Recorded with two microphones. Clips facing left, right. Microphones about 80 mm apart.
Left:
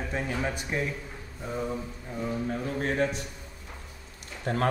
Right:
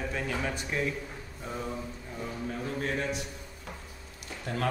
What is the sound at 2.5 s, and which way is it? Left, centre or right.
Speech, left.